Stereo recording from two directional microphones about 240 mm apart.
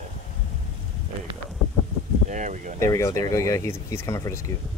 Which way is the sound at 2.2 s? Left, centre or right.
Right.